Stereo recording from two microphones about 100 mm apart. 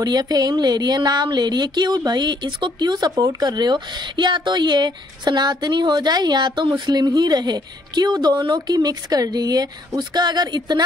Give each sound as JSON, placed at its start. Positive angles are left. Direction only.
{"t": 0.0, "sound": "speech", "side_deg": -40}